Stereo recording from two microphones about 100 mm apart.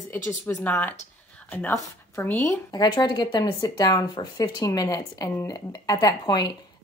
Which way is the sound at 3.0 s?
45° left (ahead or behind).